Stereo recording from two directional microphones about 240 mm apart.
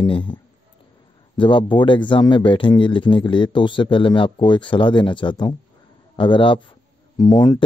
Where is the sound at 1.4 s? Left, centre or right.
Left.